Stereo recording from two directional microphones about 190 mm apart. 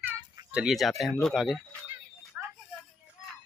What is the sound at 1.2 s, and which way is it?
Speech, centre (ahead or behind).